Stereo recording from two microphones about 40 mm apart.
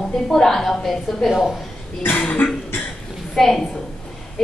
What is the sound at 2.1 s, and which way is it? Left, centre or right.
Cough, left.